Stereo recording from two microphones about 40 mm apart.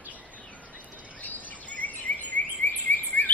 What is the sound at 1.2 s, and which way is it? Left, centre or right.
Bird vocalization, left.